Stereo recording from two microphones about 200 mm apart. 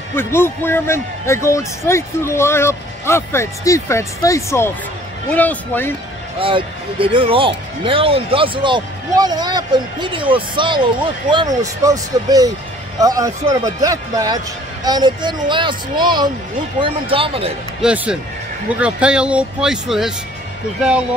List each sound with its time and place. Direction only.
0.1 s speech: 10° left (ahead or behind)
6.4 s speech: 25° right (ahead or behind)
17.8 s speech: 5° right (ahead or behind)